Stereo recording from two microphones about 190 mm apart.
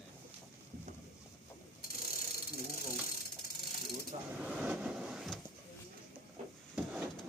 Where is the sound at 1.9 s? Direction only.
50° left (ahead or behind).